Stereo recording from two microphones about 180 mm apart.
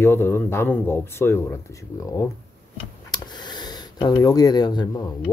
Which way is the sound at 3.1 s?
25° left (ahead or behind).